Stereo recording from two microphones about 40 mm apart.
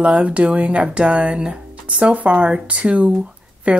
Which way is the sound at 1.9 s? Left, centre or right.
Right.